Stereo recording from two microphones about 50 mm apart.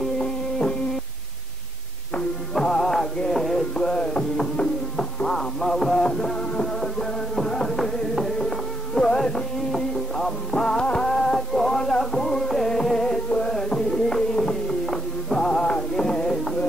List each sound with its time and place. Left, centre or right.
0.2 s music: centre
2.5 s music: centre
8.5 s music: centre
11.1 s music: centre
15.7 s a sound: centre